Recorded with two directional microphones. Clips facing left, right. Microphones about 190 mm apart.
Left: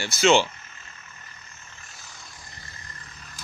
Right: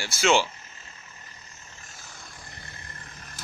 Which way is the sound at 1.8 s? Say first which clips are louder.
Right 2 dB; 50° right (ahead or behind).